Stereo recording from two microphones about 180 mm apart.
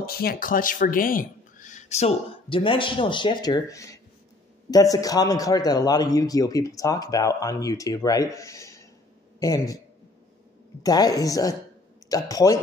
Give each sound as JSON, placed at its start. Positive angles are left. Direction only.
{"t": 0.0, "sound": "a man's voice", "side_deg": 55}
{"t": 10.8, "sound": "a man's voice", "side_deg": 20}